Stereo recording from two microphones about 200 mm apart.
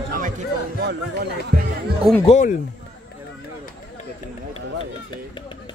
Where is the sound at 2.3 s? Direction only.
35° left (ahead or behind).